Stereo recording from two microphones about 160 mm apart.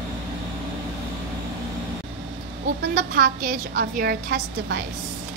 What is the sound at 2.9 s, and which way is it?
A woman's voice, 65° right (ahead or behind).